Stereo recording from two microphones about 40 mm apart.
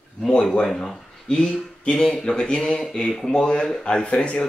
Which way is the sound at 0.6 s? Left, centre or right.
Centre.